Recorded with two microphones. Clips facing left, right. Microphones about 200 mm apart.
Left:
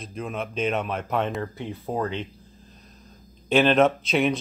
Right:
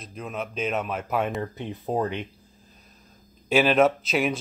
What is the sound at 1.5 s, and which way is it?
Speech, 20° right (ahead or behind).